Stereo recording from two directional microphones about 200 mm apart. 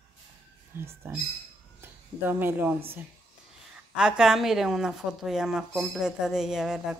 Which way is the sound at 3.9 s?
5° right (ahead or behind).